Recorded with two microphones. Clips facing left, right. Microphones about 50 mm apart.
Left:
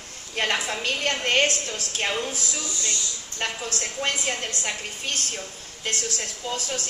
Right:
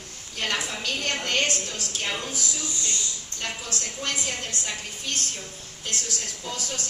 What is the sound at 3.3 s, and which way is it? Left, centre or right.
A woman's voice, left.